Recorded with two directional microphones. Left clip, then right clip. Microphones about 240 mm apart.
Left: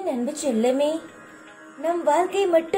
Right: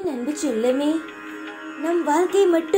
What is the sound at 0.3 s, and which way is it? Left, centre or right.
Speech, centre.